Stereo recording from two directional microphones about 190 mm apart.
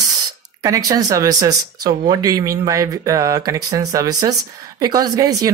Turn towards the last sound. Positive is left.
turn(degrees=-20)  # may be behind; listen again after turning